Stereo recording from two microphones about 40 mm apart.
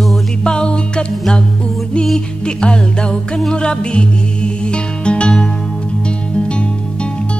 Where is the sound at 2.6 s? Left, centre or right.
Left.